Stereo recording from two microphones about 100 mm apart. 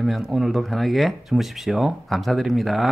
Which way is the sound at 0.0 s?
Centre (ahead or behind).